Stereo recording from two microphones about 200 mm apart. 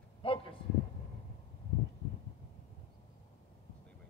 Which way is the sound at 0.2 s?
25° left (ahead or behind).